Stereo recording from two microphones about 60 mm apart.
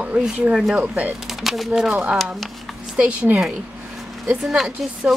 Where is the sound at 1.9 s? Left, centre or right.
Right.